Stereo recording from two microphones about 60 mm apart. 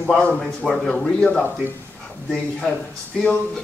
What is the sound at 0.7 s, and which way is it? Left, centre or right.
Speech, centre.